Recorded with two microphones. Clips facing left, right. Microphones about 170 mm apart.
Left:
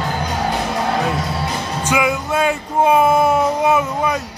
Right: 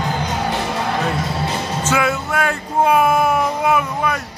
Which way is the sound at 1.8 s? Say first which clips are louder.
Left 1 dB; 15° left (ahead or behind).